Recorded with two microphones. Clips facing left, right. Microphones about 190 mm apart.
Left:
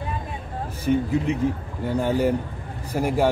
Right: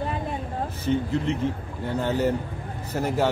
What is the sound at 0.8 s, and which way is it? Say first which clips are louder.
Speech: left 3 dB; 10° left (ahead or behind).